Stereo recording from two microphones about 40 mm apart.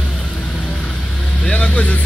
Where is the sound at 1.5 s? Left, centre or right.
Left.